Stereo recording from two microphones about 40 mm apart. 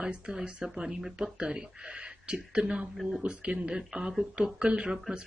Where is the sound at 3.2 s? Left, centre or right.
Right.